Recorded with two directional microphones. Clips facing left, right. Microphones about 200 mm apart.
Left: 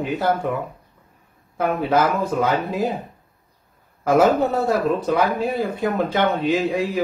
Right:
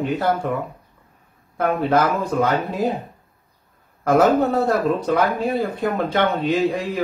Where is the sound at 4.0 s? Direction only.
5° left (ahead or behind).